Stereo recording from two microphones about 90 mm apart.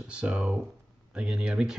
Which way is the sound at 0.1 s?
10° right (ahead or behind).